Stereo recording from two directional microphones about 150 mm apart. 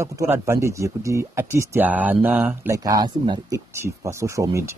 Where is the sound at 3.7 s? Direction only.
15° right (ahead or behind).